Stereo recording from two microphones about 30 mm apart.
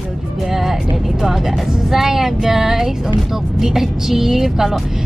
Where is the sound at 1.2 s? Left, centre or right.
Centre.